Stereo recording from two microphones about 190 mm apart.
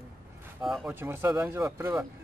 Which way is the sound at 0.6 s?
Centre (ahead or behind).